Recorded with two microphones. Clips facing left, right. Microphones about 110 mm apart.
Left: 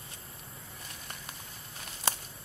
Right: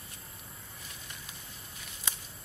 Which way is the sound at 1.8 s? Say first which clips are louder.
Left 8 dB; 55° left (ahead or behind).